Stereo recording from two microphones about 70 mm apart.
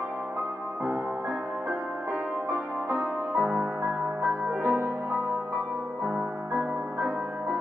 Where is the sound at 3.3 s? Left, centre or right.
Centre.